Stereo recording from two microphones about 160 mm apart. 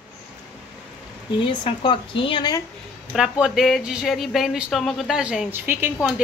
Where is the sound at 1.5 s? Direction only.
30° left (ahead or behind).